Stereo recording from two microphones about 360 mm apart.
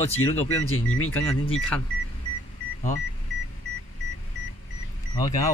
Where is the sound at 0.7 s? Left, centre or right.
Left.